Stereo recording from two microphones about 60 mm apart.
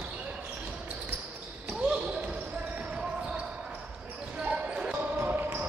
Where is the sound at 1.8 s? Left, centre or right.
Centre.